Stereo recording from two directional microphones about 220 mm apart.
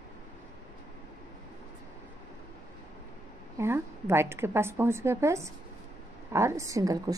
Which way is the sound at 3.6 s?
10° right (ahead or behind).